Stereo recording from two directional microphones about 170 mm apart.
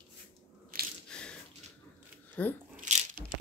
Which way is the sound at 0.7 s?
55° right (ahead or behind).